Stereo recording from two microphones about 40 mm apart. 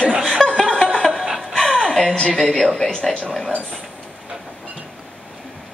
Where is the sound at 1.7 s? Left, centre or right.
Centre.